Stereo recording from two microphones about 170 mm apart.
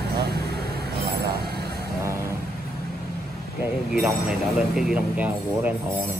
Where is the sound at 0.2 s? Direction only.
70° right (ahead or behind).